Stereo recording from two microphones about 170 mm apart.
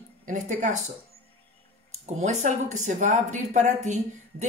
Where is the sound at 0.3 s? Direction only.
45° right (ahead or behind).